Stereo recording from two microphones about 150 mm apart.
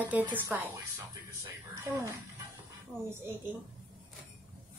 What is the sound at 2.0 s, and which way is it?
Speech, 20° right (ahead or behind).